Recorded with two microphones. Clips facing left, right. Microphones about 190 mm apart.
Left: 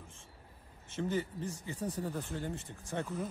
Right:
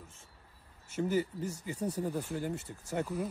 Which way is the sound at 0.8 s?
10° right (ahead or behind).